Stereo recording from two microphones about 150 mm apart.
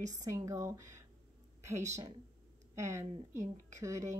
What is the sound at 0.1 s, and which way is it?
Speech, 25° right (ahead or behind).